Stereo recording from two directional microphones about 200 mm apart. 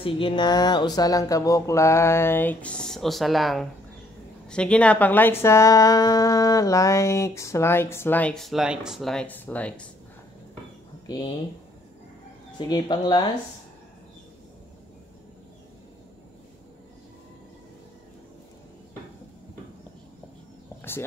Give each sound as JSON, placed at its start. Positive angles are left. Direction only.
{"t": 0.0, "sound": "speech", "side_deg": 25}
{"t": 12.5, "sound": "speech", "side_deg": 20}